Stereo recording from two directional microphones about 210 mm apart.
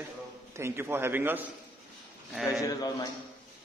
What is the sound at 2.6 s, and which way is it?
Speech, 15° left (ahead or behind).